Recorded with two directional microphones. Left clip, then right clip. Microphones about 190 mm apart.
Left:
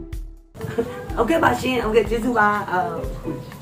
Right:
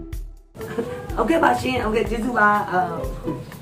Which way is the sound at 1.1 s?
Centre (ahead or behind).